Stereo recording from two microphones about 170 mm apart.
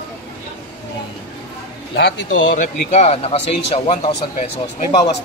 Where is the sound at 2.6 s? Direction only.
40° left (ahead or behind).